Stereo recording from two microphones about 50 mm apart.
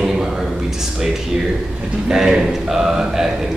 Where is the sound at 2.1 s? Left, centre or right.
Centre.